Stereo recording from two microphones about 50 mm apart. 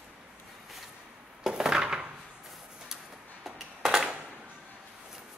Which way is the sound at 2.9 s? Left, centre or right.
Centre.